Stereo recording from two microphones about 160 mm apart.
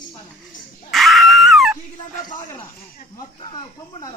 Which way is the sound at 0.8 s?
Centre (ahead or behind).